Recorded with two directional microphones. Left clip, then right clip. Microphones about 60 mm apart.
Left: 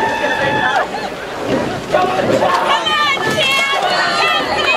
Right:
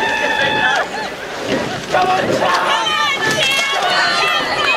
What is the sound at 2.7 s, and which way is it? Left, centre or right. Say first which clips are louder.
Run: left 2 dB; centre.